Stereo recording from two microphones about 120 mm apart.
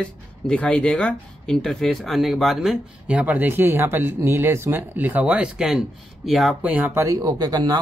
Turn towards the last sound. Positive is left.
turn(degrees=-35)  # may be behind; listen again after turning